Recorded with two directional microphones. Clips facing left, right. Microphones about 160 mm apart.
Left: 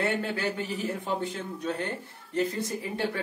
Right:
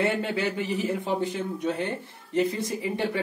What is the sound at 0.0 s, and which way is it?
Speech, 20° right (ahead or behind).